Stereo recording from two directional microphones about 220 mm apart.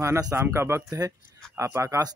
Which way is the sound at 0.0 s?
15° right (ahead or behind).